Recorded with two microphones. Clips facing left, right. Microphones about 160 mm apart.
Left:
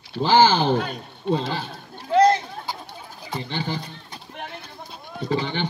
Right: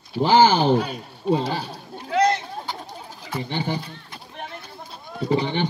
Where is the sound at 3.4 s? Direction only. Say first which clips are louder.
Right 3 dB; 15° right (ahead or behind).